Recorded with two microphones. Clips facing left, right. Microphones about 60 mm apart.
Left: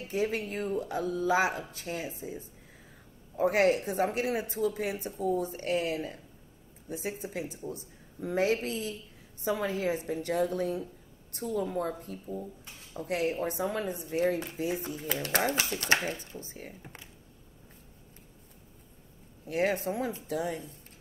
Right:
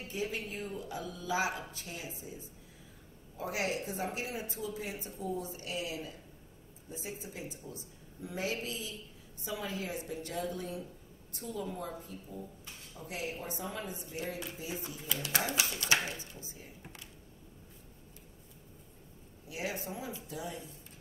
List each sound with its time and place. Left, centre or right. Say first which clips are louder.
0.1 s speech: left 7 dB; left
16.4 s speech: left 6 dB; left
19.4 s speech: left 10 dB; left